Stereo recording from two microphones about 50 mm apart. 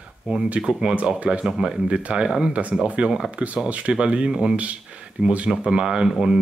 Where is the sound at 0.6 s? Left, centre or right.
Centre.